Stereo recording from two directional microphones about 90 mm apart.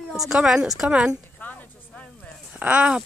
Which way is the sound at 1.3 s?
20° left (ahead or behind).